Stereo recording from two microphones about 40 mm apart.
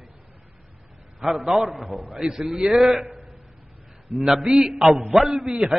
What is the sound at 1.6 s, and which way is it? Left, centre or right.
Speech, right.